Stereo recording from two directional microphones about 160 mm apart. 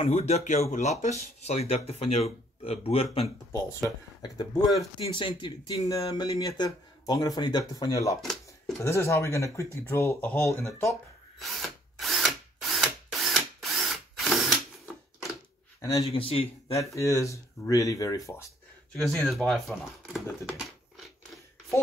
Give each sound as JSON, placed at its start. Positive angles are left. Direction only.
{"t": 0.0, "sound": "speech", "side_deg": 40}
{"t": 8.2, "sound": "a sound", "side_deg": 0}
{"t": 8.8, "sound": "speech", "side_deg": 15}
{"t": 11.3, "sound": "drill", "side_deg": 0}
{"t": 15.8, "sound": "a man's voice", "side_deg": 20}
{"t": 16.1, "sound": "speech", "side_deg": 40}
{"t": 16.9, "sound": "speech", "side_deg": 20}
{"t": 18.9, "sound": "speech", "side_deg": 0}
{"t": 20.1, "sound": "a sound", "side_deg": 0}